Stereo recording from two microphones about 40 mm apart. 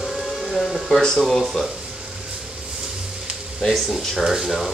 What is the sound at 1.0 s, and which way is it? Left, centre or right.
Speech, centre.